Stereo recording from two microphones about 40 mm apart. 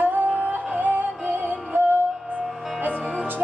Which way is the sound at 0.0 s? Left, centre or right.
Right.